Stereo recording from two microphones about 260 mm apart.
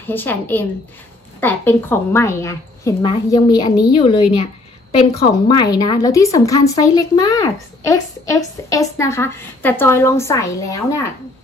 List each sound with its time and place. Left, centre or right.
0.0 s speech: centre